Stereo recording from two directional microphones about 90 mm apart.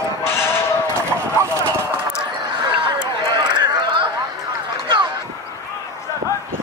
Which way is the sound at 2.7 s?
60° right (ahead or behind).